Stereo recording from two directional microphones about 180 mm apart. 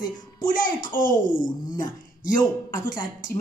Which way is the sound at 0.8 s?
50° left (ahead or behind).